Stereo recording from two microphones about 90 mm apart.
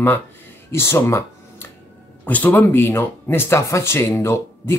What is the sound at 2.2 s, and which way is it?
Speech, 20° left (ahead or behind).